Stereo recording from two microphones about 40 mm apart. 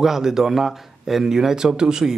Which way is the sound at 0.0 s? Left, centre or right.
Centre.